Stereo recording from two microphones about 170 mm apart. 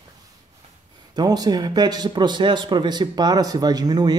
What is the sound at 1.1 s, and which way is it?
A man's voice, 25° right (ahead or behind).